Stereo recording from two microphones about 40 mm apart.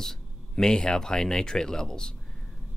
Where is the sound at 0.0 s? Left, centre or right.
Centre.